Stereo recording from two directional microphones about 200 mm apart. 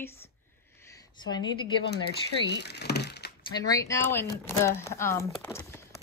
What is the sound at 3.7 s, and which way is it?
Speech, 15° left (ahead or behind).